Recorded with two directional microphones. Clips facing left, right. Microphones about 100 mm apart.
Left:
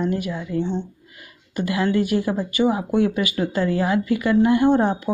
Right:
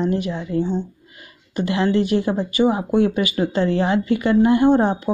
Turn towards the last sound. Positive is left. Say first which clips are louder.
# right 2 dB
turn(degrees=-20)  # may be behind; listen again after turning